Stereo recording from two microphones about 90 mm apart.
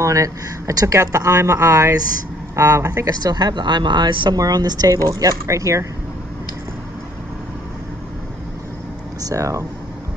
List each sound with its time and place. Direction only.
0.0 s speech: 35° right (ahead or behind); by 4.4 s 55° right (ahead or behind)
4.4 s speech: 45° right (ahead or behind)
9.2 s speech: 35° right (ahead or behind)